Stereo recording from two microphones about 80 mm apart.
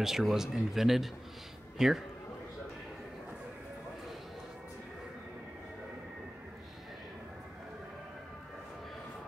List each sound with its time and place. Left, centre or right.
0.0 s speech: centre